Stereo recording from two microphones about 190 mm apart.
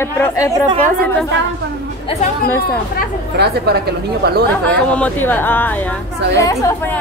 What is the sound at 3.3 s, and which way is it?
A woman's voice, 60° right (ahead or behind).